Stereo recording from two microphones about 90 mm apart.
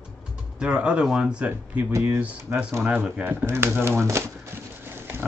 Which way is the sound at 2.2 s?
15° right (ahead or behind).